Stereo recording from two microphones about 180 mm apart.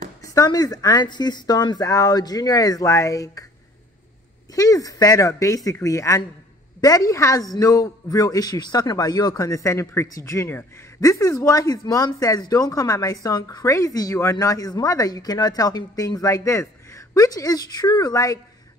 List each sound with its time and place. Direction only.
0.2 s a man's voice: 20° left (ahead or behind)
4.6 s a man's voice: 20° left (ahead or behind)